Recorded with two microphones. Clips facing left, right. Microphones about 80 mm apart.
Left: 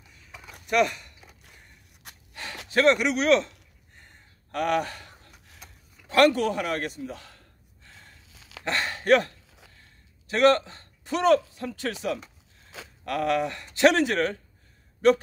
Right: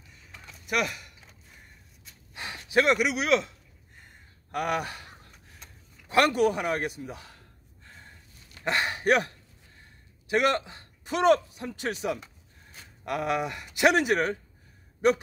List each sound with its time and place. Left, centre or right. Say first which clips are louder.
0.7 s speech: left 6 dB; centre
2.1 s gasp: left 8 dB; left
2.7 s speech: left 2 dB; centre
6.0 s a sound: left 2 dB; centre
8.3 s dog: left 6 dB; left
8.6 s a sound: left 2 dB; centre
10.2 s a man's voice: left 5 dB; centre